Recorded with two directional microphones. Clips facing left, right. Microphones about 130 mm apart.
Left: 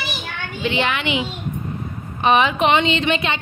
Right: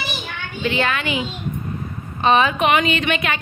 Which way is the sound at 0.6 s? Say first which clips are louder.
Even; 20° left (ahead or behind).